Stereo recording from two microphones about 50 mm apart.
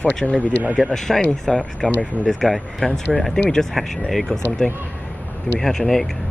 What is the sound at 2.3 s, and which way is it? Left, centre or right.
Speech, centre.